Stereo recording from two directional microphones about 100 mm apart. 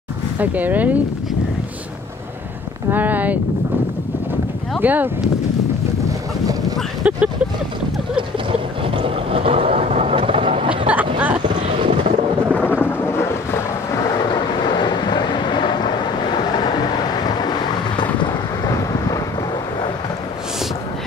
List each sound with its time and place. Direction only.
0.4 s speech: 15° right (ahead or behind)
2.9 s speech: 15° right (ahead or behind)
4.8 s speech: 15° right (ahead or behind)
7.0 s speech: 10° right (ahead or behind)
8.2 s boat: 60° right (ahead or behind)
10.9 s vehicle: 15° right (ahead or behind)
12.5 s thunder: 20° left (ahead or behind)
14.6 s vehicle: 50° left (ahead or behind)